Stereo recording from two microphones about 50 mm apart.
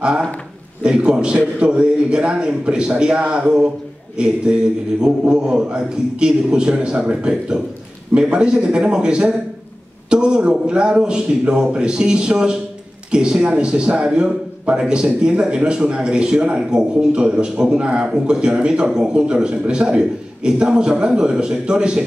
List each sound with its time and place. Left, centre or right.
0.8 s a man's voice: centre